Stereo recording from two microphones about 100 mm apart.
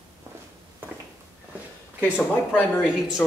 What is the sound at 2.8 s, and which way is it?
Speech, 5° right (ahead or behind).